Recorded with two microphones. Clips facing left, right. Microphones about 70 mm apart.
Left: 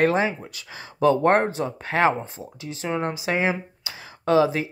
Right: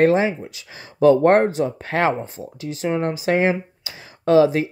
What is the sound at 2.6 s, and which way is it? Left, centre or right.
Speech, right.